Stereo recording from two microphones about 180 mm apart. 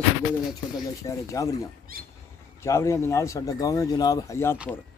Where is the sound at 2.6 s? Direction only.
15° left (ahead or behind).